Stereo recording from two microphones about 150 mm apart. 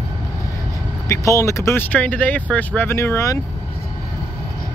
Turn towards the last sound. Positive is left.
turn(degrees=20)  # may be behind; listen again after turning